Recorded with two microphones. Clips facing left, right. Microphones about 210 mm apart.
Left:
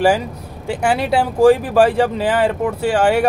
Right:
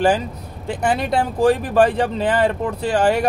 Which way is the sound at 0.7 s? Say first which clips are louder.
Left 2 dB; 10° left (ahead or behind).